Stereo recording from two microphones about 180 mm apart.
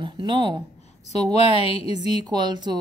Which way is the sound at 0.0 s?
25° right (ahead or behind).